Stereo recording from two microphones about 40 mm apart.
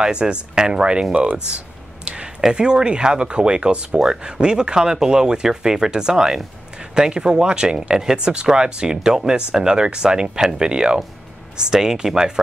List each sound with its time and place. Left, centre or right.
0.0 s speech: right
1.1 s speech: right
2.5 s speech: right